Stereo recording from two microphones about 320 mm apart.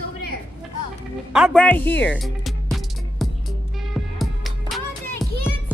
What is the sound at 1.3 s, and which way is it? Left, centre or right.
Music, centre.